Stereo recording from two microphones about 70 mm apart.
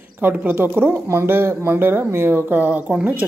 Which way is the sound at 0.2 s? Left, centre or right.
Right.